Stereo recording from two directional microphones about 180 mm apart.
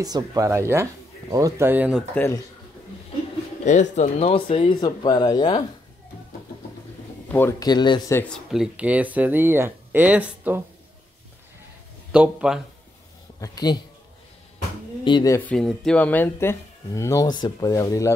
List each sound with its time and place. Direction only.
0.0 s speech: 20° right (ahead or behind)
2.0 s speech: 15° left (ahead or behind)
3.6 s speech: 40° left (ahead or behind); by 5.6 s 25° left (ahead or behind)
7.2 s speech: 10° left (ahead or behind)
8.1 s speech: 10° left (ahead or behind)
8.5 s speech: 5° right (ahead or behind)
12.1 s speech: 5° right (ahead or behind)
13.4 s speech: 20° left (ahead or behind)
15.0 s speech: 25° left (ahead or behind)
15.3 s speech: 5° left (ahead or behind)